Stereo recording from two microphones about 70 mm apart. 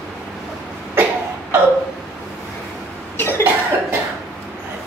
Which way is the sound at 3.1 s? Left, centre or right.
Left.